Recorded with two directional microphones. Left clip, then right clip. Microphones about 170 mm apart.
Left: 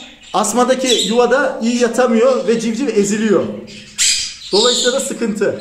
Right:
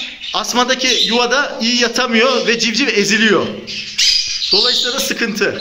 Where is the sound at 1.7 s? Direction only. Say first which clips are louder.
Even; 15° right (ahead or behind).